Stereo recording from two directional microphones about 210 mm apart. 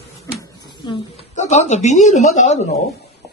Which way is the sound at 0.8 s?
20° left (ahead or behind).